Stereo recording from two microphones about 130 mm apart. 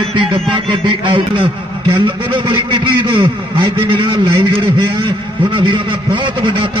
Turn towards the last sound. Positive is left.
turn(degrees=-40)  # may be behind; listen again after turning